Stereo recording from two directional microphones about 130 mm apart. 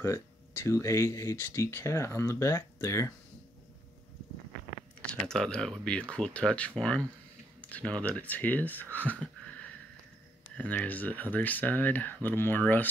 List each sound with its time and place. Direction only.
0.7 s speech: 25° left (ahead or behind)
5.2 s speech: 5° left (ahead or behind)